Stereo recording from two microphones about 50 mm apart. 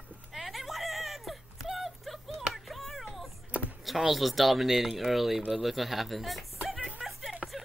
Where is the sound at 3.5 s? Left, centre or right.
Right.